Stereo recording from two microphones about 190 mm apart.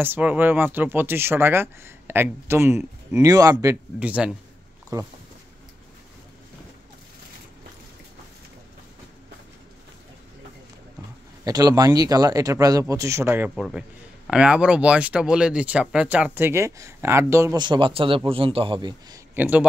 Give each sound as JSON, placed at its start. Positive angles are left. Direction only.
{"t": 0.0, "sound": "speech", "side_deg": -10}
{"t": 4.0, "sound": "speech", "side_deg": -5}
{"t": 4.9, "sound": "speech", "side_deg": -20}
{"t": 11.4, "sound": "speech", "side_deg": -20}
{"t": 19.3, "sound": "a man's voice", "side_deg": -10}